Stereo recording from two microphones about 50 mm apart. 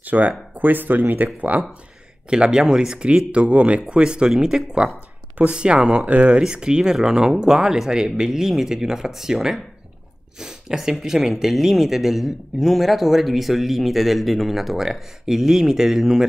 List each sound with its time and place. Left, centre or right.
0.0 s speech: right
2.2 s speech: centre
6.0 s speech: right
6.3 s speech: centre